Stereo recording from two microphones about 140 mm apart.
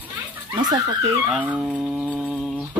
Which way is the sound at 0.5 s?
30° right (ahead or behind).